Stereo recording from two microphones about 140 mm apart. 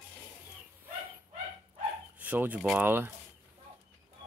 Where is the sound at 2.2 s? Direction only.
10° right (ahead or behind).